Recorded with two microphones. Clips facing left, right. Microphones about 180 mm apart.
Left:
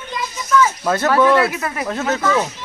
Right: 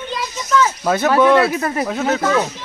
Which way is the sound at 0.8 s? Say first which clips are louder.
Right 4 dB; 15° right (ahead or behind).